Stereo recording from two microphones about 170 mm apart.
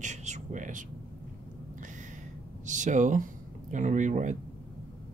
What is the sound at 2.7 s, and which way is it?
Speech, 45° right (ahead or behind).